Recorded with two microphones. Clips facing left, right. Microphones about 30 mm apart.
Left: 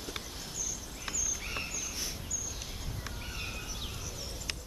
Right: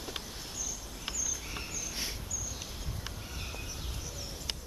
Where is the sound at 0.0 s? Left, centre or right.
Centre.